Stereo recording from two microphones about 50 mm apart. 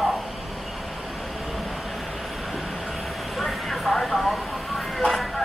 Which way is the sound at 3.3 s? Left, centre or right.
Centre.